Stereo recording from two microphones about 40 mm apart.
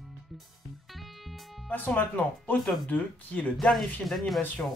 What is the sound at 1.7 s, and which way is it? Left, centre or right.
Speech, left.